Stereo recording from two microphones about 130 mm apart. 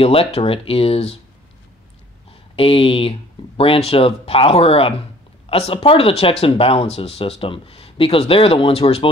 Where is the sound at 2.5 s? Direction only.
45° left (ahead or behind).